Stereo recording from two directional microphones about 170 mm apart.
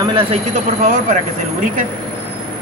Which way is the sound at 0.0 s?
30° right (ahead or behind).